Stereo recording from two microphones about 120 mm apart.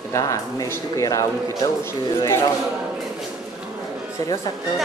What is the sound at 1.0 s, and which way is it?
Speech, 30° left (ahead or behind).